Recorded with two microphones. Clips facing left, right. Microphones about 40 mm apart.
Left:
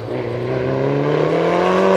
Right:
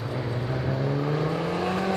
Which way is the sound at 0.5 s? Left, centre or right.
Left.